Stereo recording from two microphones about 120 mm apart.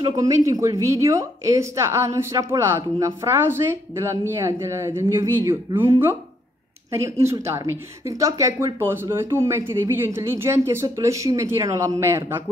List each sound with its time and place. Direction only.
0.1 s speech: 30° right (ahead or behind)
7.2 s speech: 20° right (ahead or behind)